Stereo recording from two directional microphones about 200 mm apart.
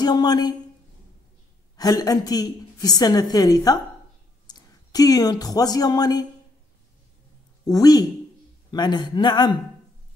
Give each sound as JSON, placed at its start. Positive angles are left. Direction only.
{"t": 0.0, "sound": "a woman's voice", "side_deg": 20}
{"t": 1.8, "sound": "a woman's voice", "side_deg": 20}
{"t": 7.6, "sound": "a woman's voice", "side_deg": 20}